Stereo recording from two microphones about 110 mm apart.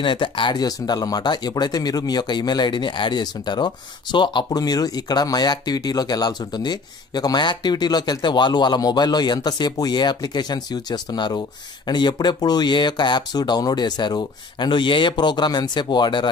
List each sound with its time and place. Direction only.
0.0 s speech: 50° left (ahead or behind)